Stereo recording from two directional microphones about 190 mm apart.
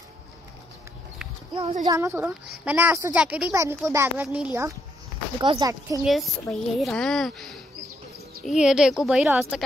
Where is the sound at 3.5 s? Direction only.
15° right (ahead or behind).